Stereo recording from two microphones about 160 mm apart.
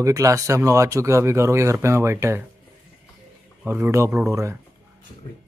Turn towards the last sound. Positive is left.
turn(degrees=-20)  # may be behind; listen again after turning